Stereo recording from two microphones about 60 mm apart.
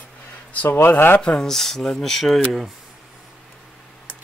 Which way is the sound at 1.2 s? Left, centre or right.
Centre.